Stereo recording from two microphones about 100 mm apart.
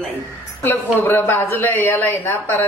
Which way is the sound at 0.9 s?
20° left (ahead or behind).